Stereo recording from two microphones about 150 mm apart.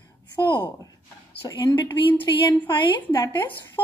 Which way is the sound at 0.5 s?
35° left (ahead or behind).